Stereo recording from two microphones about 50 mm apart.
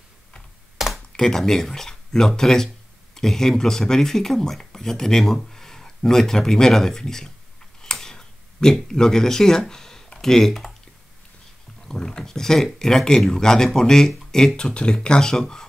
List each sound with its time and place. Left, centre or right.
0.7 s a sound: centre
1.1 s speech: centre
7.8 s tick-tock: centre
8.8 s speech: centre
11.9 s speech: centre